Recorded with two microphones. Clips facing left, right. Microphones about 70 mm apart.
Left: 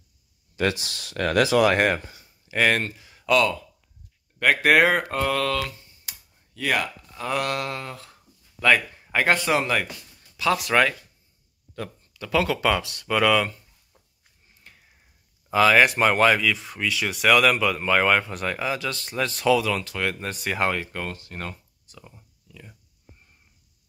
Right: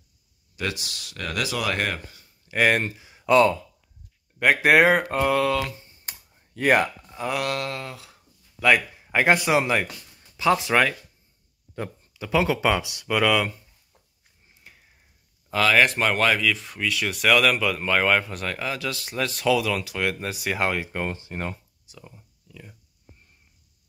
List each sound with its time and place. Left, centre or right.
0.6 s speech: left
1.1 s speech: left
2.5 s speech: centre
3.3 s speech: right
4.4 s speech: centre
6.0 s computer keyboard: right
7.2 s speech: centre
8.7 s speech: centre
10.7 s speech: centre
11.7 s speech: centre
14.6 s a sound: centre
15.5 s speech: centre
20.8 s speech: centre
21.9 s speech: centre